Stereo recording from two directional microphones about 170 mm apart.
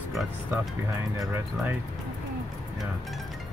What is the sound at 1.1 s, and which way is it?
Speech, 15° right (ahead or behind).